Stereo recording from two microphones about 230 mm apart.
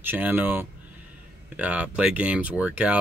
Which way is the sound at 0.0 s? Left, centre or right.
Centre.